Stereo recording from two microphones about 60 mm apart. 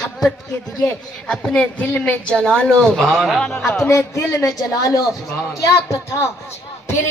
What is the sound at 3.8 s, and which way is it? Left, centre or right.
A man's voice, left.